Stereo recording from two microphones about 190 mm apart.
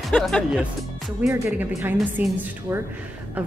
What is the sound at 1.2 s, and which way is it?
A woman's voice, 10° right (ahead or behind).